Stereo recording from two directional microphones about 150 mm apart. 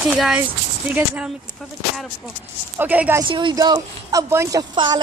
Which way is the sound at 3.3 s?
30° right (ahead or behind).